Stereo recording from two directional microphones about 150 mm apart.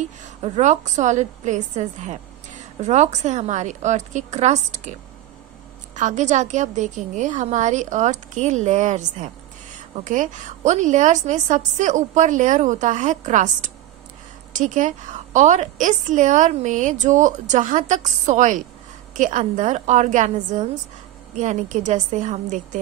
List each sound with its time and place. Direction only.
0.0 s a woman's voice: 55° right (ahead or behind)
5.9 s a woman's voice: 55° right (ahead or behind)